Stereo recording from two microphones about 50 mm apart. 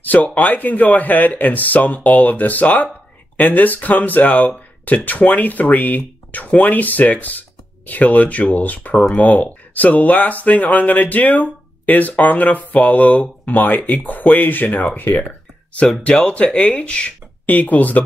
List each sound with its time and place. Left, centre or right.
0.0 s speech: left
15.1 s a sound: left
16.0 s speech: left
17.5 s speech: left